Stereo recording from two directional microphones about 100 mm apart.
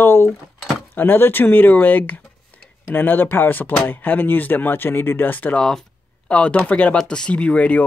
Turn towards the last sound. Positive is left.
turn(degrees=15)  # may be behind; listen again after turning